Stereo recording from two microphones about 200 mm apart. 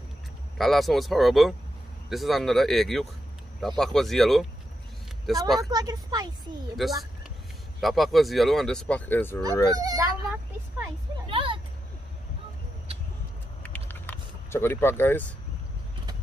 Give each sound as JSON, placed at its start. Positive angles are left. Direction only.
{"t": 0.6, "sound": "speech", "side_deg": 0}
{"t": 5.6, "sound": "speech", "side_deg": -20}
{"t": 6.8, "sound": "speech", "side_deg": 0}
{"t": 9.8, "sound": "speech", "side_deg": -20}
{"t": 11.2, "sound": "vehicle", "side_deg": -25}
{"t": 13.6, "sound": "vehicle", "side_deg": 10}